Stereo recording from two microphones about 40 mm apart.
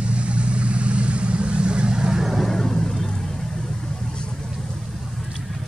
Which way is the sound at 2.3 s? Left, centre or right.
Centre.